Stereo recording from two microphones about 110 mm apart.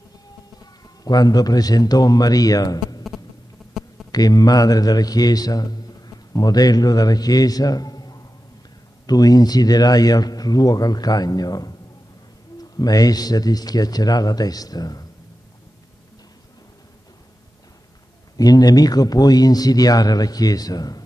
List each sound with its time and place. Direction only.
0.6 s speech: 35° left (ahead or behind)
4.1 s a man's voice: 35° left (ahead or behind)
12.7 s a man's voice: 35° left (ahead or behind)
18.4 s a man's voice: 35° left (ahead or behind)